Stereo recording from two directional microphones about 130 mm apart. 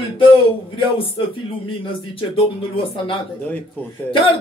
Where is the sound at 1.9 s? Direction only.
45° left (ahead or behind).